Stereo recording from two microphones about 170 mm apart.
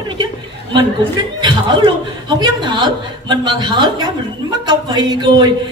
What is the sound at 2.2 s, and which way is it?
A woman's voice, 25° right (ahead or behind).